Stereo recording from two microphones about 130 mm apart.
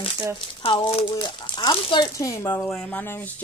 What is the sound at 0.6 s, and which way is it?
Speech, 50° left (ahead or behind).